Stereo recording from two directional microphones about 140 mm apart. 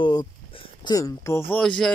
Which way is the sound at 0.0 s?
30° left (ahead or behind).